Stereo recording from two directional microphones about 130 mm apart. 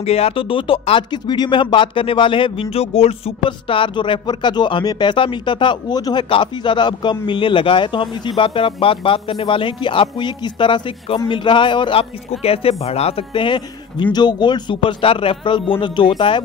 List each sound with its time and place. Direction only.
0.0 s a man's voice: 50° left (ahead or behind)